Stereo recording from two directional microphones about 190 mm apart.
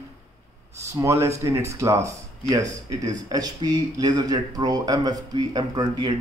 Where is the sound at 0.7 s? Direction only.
15° right (ahead or behind).